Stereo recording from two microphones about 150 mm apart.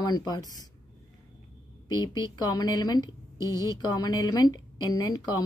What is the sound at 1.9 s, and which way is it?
A woman's voice, 25° left (ahead or behind).